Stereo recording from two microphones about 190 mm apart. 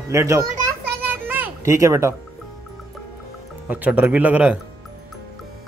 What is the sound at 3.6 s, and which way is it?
Speech, 10° right (ahead or behind).